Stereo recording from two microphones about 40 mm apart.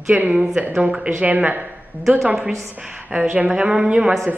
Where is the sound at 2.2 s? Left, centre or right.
Centre.